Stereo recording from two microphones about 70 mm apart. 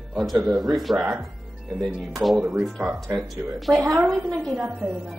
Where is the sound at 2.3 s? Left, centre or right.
Centre.